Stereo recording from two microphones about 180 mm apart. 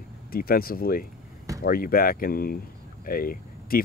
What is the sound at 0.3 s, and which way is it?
Speech, 55° left (ahead or behind).